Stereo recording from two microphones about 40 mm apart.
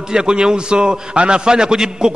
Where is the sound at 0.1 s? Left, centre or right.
Centre.